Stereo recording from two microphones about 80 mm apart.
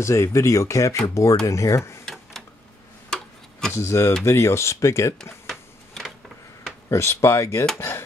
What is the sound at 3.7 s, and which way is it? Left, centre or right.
Speech, left.